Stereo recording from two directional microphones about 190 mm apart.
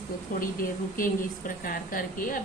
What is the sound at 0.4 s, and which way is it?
A woman's voice, 45° left (ahead or behind).